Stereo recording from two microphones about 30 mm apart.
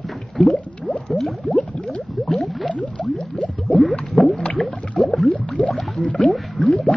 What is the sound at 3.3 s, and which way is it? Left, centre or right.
Boiling, left.